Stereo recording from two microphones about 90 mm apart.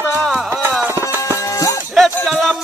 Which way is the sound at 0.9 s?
25° right (ahead or behind).